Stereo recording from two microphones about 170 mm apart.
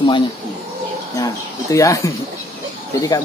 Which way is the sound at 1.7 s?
20° left (ahead or behind).